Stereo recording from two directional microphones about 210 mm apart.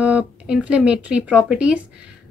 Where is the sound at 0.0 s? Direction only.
5° right (ahead or behind).